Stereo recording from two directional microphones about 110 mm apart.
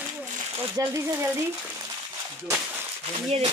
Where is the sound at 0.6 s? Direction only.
25° right (ahead or behind).